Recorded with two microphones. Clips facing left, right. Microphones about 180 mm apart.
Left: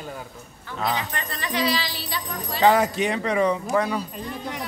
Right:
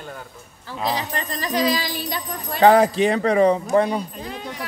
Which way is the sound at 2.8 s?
35° right (ahead or behind).